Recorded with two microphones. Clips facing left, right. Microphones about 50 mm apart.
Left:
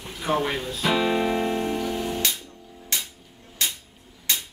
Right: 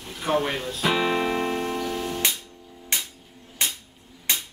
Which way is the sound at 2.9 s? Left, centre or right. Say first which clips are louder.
Right 1 dB; right.